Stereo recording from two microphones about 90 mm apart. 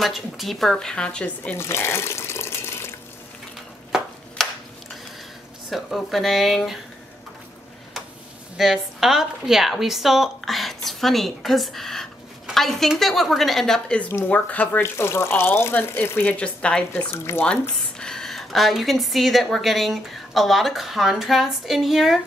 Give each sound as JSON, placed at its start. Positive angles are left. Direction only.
{"t": 0.0, "sound": "speech", "side_deg": 0}
{"t": 1.6, "sound": "water", "side_deg": 30}
{"t": 5.7, "sound": "speech", "side_deg": 0}
{"t": 8.5, "sound": "a woman's voice", "side_deg": -5}
{"t": 14.8, "sound": "speech", "side_deg": 30}